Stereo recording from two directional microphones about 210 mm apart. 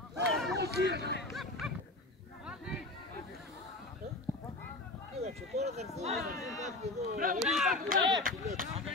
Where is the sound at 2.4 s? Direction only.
5° right (ahead or behind).